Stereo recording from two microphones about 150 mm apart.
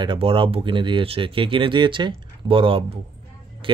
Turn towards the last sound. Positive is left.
turn(degrees=-35)  # may be behind; listen again after turning